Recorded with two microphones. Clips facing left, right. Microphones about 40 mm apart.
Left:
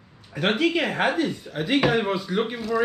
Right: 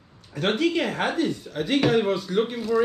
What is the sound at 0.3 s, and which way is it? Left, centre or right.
Speech, centre.